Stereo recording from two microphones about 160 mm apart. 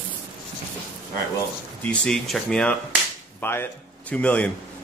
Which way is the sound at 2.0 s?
Centre (ahead or behind).